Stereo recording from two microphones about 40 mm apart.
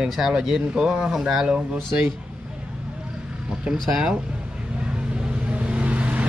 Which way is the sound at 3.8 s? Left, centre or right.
Centre.